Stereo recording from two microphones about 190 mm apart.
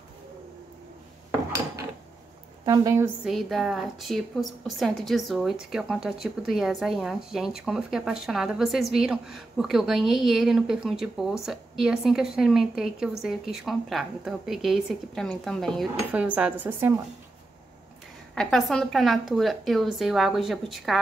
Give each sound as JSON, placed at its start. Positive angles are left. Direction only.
{"t": 2.6, "sound": "a woman's voice", "side_deg": -20}
{"t": 3.3, "sound": "speech", "side_deg": 0}
{"t": 18.3, "sound": "speech", "side_deg": 0}